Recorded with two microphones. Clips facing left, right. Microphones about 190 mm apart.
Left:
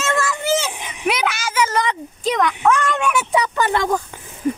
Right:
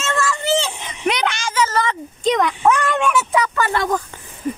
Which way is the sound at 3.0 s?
15° left (ahead or behind).